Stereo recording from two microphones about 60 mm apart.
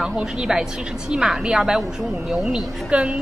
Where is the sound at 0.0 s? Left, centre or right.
Centre.